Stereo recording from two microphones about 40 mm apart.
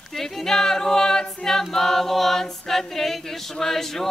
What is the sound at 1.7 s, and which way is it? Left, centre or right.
A capella, centre.